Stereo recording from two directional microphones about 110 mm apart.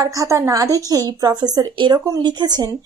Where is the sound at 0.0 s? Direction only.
25° right (ahead or behind).